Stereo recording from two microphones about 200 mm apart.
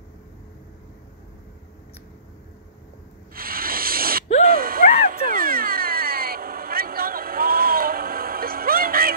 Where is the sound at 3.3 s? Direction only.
45° right (ahead or behind).